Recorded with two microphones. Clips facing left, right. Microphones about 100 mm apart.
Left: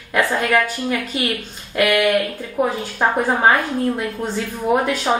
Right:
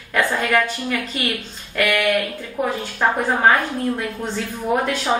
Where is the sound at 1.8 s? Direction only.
20° left (ahead or behind).